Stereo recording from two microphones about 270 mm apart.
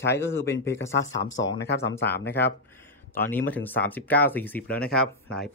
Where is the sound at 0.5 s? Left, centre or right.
Left.